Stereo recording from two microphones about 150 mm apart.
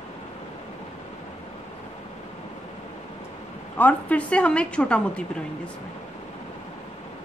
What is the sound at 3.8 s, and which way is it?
A woman's voice, 10° left (ahead or behind).